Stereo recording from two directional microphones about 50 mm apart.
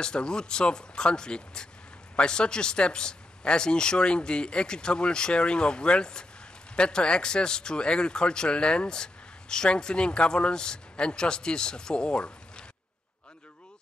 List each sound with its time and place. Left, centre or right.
0.0 s speech: centre